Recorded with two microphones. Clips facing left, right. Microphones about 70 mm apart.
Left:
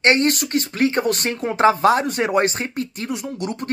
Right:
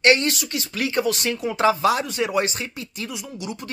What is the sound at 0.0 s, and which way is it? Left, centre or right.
Speech, left.